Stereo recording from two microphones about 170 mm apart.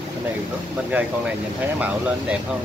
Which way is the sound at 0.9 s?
10° right (ahead or behind).